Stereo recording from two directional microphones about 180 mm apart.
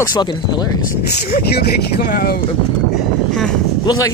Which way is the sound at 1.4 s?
65° left (ahead or behind).